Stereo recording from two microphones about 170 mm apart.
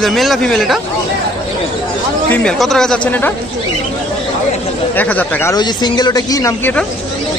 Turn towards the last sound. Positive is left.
turn(degrees=20)  # may be behind; listen again after turning